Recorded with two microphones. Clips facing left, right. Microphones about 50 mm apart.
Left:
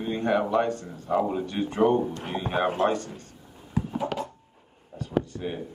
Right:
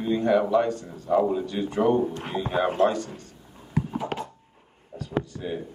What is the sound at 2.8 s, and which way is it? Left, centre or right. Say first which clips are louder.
Speech: right 5 dB; left.